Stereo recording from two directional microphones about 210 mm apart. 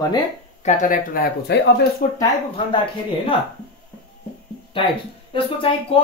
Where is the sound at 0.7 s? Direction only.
40° left (ahead or behind).